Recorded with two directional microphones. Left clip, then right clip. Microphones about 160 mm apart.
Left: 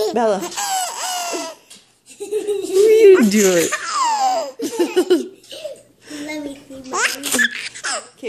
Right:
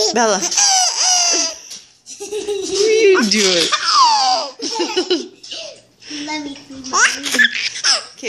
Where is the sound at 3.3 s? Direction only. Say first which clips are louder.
Right 1 dB; 50° left (ahead or behind).